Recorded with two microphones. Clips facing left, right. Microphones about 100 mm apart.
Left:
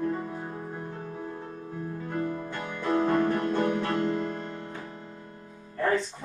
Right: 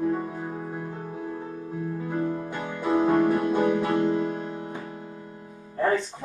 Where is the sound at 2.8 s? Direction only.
10° right (ahead or behind).